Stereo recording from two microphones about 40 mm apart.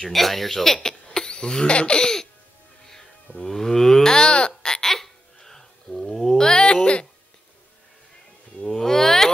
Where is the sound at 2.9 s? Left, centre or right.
Centre.